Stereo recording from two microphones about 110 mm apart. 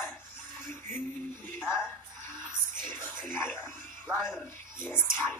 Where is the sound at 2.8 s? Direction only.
20° left (ahead or behind).